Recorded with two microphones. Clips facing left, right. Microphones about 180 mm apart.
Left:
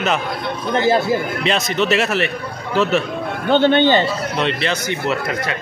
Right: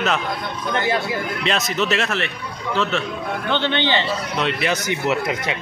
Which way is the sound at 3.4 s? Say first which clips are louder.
Left 9 dB; 45° left (ahead or behind).